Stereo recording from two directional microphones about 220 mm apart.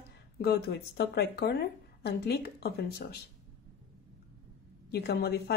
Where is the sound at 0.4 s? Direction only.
50° left (ahead or behind).